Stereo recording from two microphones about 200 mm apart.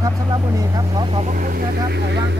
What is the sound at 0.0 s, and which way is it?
Speech, 15° right (ahead or behind).